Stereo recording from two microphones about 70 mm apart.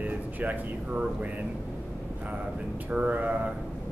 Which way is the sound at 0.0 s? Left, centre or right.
Right.